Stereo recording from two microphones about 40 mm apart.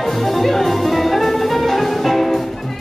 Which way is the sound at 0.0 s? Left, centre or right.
Centre.